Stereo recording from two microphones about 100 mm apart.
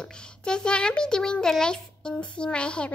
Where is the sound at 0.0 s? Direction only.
10° left (ahead or behind).